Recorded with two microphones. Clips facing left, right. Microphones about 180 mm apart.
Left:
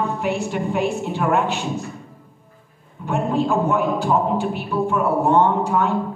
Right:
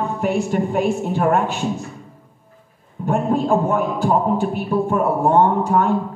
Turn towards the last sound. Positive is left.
turn(degrees=-45)  # may be behind; listen again after turning